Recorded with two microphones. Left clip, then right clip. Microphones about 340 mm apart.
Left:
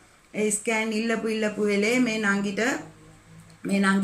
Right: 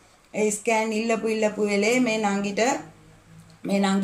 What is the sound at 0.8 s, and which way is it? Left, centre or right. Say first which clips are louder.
A woman's voice: right 2 dB; centre.